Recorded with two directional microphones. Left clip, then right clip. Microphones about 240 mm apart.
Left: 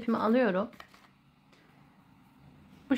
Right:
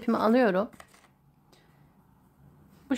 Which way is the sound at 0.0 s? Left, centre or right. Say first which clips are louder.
Right 4 dB; right.